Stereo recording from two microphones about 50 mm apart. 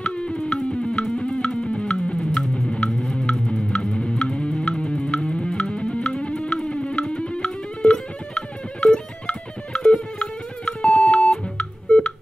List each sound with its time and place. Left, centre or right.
0.0 s music: left